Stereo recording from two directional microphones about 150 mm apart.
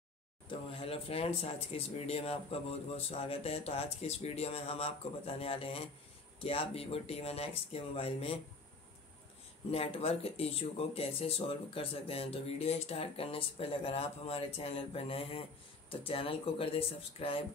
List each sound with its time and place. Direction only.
0.5 s speech: 35° left (ahead or behind)
9.7 s speech: 40° left (ahead or behind)